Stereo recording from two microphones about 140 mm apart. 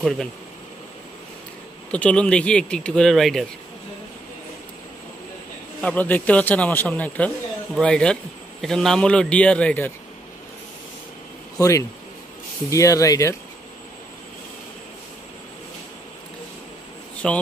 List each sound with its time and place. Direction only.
0.0 s speech: centre (ahead or behind)
1.9 s a man's voice: 10° left (ahead or behind)
5.8 s a man's voice: 10° left (ahead or behind)
11.5 s speech: 20° left (ahead or behind)
17.2 s speech: 5° left (ahead or behind)